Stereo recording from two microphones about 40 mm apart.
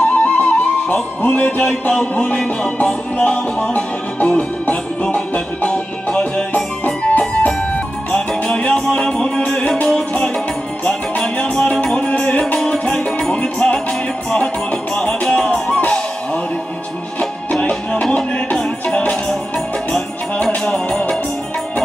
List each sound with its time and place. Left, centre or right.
0.0 s music: left
1.6 s a sound: centre
2.0 s music: left
3.7 s music: left
6.5 s music: left
8.1 s music: centre
10.9 s music: left
11.7 s music: centre
15.0 s music: centre
17.2 s music: left
18.6 s music: centre
20.4 s music: centre